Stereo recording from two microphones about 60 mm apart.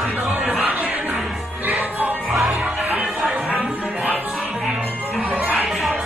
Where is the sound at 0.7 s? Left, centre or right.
Right.